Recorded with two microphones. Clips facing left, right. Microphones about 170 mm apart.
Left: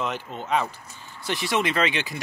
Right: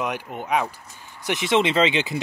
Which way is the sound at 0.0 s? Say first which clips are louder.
Right 2 dB; 10° right (ahead or behind).